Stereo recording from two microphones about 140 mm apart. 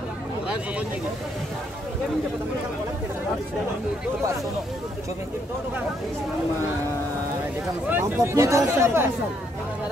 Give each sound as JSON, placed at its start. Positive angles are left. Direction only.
{"t": 7.9, "sound": "speech", "side_deg": -20}